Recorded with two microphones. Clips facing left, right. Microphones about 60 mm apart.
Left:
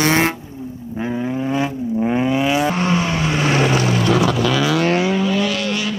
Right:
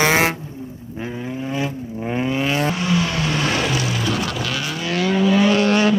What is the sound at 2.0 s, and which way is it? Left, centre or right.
Vehicle, centre.